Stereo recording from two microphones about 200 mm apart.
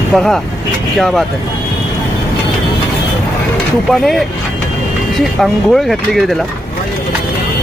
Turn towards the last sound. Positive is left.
turn(degrees=0)  # may be behind; listen again after turning